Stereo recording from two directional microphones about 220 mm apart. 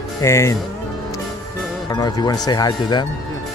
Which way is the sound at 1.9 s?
20° left (ahead or behind).